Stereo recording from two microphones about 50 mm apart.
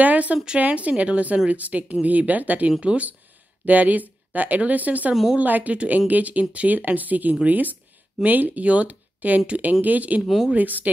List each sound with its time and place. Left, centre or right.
0.0 s a woman's voice: right
10.2 s speech: centre
10.5 s speech: right